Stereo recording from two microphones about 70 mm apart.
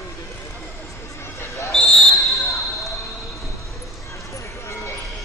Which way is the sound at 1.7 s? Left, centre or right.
Centre.